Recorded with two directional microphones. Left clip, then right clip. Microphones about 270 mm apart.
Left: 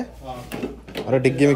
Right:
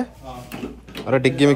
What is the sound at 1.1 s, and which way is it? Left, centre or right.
Speech, right.